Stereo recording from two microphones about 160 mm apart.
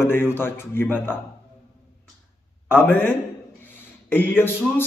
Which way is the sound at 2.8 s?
15° left (ahead or behind).